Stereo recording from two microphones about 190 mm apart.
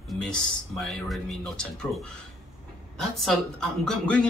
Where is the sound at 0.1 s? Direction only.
Centre (ahead or behind).